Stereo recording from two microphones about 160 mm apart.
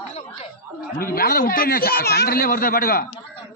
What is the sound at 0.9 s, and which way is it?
A man's voice, 65° left (ahead or behind).